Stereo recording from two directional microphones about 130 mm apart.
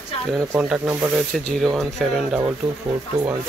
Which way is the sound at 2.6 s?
40° right (ahead or behind).